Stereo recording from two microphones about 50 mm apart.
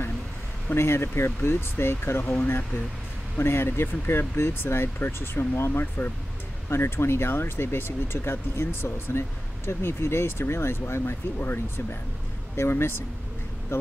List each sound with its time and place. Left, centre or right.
0.7 s speech: left
2.3 s speech: left
3.3 s speech: left
6.7 s speech: left